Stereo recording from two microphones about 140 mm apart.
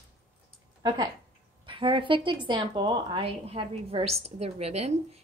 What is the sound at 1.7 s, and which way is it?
A woman's voice, 35° right (ahead or behind).